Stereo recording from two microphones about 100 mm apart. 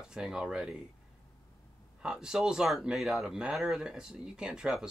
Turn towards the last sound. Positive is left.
turn(degrees=-5)  # may be behind; listen again after turning